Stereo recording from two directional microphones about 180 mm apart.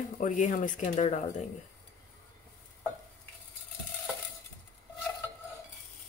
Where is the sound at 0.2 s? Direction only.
45° left (ahead or behind).